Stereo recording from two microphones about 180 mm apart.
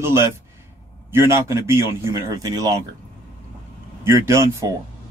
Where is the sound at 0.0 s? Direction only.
15° right (ahead or behind).